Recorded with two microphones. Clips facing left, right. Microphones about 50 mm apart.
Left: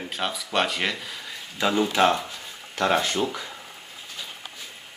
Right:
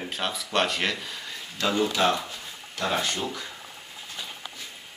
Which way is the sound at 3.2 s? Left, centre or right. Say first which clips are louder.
Left 5 dB; left.